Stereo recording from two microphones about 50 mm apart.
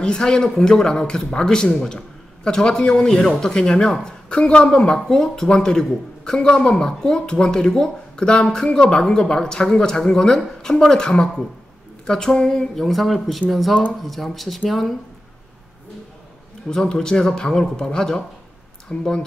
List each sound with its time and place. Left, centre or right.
0.0 s a man's voice: centre
16.6 s speech: centre